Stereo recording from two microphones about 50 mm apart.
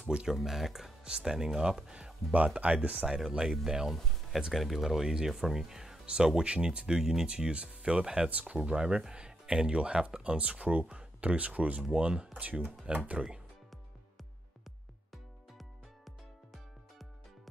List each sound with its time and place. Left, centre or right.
0.1 s speech: centre
0.4 s speech: centre
1.0 s speech: centre
2.3 s speech: right
8.3 s speech: right